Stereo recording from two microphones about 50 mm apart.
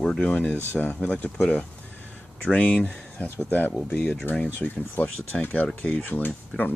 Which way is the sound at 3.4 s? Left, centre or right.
Left.